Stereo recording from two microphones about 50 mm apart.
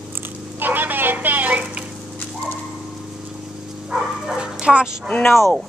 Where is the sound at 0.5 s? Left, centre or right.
Right.